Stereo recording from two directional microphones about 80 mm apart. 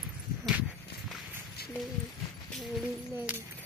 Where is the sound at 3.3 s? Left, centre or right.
Centre.